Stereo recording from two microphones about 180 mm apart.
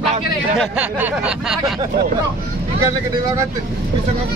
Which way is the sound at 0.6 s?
10° right (ahead or behind).